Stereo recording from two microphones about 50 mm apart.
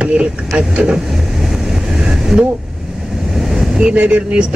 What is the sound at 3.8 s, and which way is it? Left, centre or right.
Speech, right.